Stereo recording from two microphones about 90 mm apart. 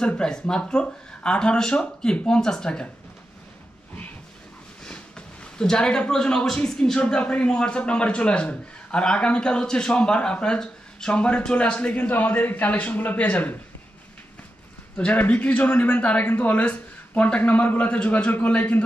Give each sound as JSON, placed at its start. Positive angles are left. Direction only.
{"t": 0.0, "sound": "speech", "side_deg": 10}
{"t": 4.8, "sound": "speech", "side_deg": 10}
{"t": 15.0, "sound": "speech", "side_deg": 15}